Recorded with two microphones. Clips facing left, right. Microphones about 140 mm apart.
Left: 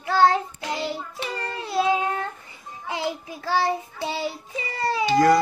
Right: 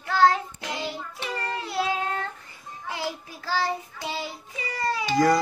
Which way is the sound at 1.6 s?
20° left (ahead or behind).